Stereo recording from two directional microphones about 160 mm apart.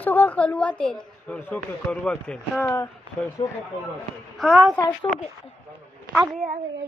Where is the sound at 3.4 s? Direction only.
35° left (ahead or behind).